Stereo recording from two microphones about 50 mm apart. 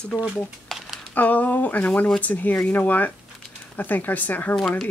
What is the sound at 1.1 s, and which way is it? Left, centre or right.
Speech, left.